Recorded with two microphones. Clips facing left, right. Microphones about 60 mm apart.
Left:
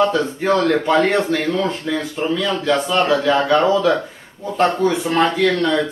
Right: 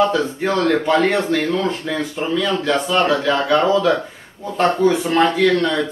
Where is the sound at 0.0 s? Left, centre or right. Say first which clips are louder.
Even; centre.